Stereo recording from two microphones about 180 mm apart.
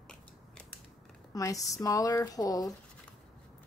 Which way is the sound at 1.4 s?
20° left (ahead or behind).